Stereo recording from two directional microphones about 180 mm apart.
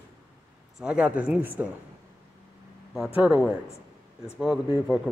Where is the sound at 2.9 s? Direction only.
5° right (ahead or behind).